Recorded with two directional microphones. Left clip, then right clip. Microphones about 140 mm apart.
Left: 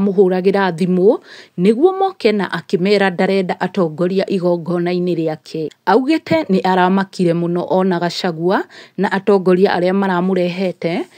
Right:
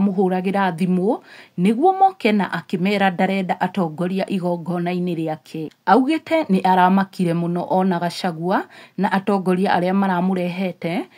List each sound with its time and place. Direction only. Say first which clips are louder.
0.0 s a woman's voice: left 7 dB; 30° left (ahead or behind)